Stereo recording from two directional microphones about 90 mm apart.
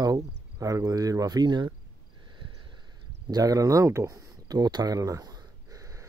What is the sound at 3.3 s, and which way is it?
Speech, 40° right (ahead or behind).